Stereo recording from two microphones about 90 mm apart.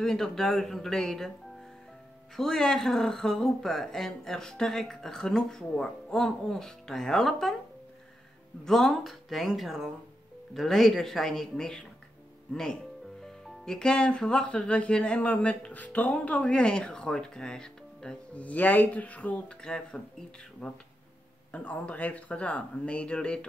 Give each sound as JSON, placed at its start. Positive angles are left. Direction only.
{"t": 0.0, "sound": "speech", "side_deg": 5}
{"t": 2.3, "sound": "speech", "side_deg": 5}
{"t": 8.6, "sound": "speech", "side_deg": 5}
{"t": 13.2, "sound": "speech", "side_deg": 5}